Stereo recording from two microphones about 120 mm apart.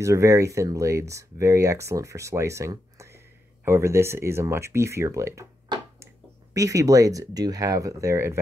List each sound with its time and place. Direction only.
0.0 s speech: 25° right (ahead or behind)
6.5 s speech: 25° right (ahead or behind)